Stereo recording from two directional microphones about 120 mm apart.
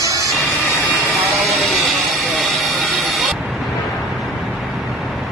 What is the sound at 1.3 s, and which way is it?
Vehicle, centre (ahead or behind).